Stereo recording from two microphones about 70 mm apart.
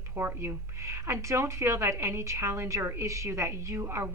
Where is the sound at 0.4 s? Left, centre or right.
Right.